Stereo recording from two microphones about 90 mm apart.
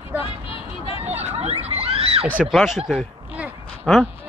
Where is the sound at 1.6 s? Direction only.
90° right.